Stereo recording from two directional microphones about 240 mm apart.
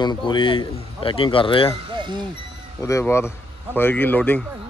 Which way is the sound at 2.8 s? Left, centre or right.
Centre.